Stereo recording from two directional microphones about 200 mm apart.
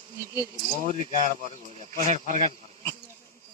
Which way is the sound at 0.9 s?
40° right (ahead or behind).